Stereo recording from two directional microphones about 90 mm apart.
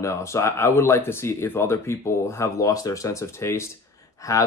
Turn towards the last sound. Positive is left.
turn(degrees=35)  # may be behind; listen again after turning